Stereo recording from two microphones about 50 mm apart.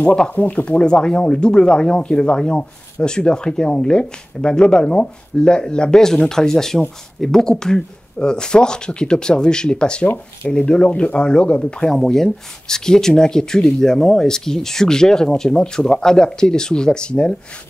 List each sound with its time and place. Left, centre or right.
0.3 s speech: left
11.9 s speech: centre